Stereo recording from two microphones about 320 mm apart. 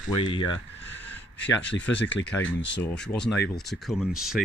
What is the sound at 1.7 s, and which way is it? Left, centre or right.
Speech, left.